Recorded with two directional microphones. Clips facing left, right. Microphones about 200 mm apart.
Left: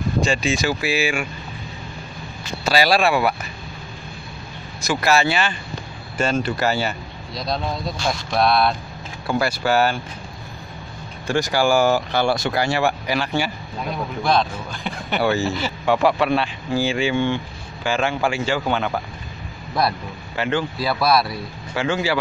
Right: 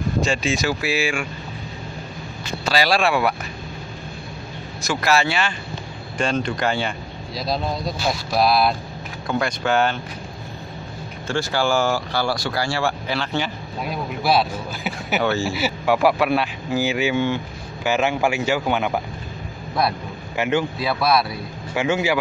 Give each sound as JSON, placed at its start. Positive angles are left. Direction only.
{"t": 0.2, "sound": "speech", "side_deg": 0}
{"t": 2.6, "sound": "speech", "side_deg": 5}
{"t": 4.8, "sound": "speech", "side_deg": 0}
{"t": 11.2, "sound": "speech", "side_deg": 15}
{"t": 13.8, "sound": "speech", "side_deg": -5}
{"t": 19.8, "sound": "speech", "side_deg": 0}
{"t": 20.3, "sound": "speech", "side_deg": -10}
{"t": 20.8, "sound": "speech", "side_deg": 0}
{"t": 21.7, "sound": "speech", "side_deg": -10}